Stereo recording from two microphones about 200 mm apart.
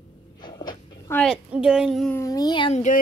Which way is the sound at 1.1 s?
5° left (ahead or behind).